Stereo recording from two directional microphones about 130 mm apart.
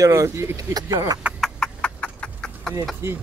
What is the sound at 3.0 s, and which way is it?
Speech, 20° right (ahead or behind).